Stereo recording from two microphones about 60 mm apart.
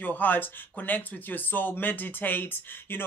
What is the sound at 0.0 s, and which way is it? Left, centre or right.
Speech, left.